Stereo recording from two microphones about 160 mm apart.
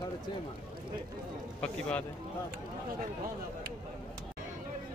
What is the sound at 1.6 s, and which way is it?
Speech, 10° left (ahead or behind).